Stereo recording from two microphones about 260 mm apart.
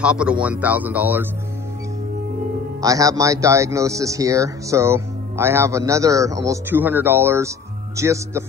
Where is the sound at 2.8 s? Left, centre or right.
Centre.